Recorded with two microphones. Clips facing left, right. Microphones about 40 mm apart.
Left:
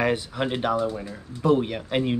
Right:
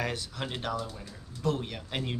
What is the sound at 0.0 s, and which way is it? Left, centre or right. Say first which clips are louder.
Speech: left 10 dB; left.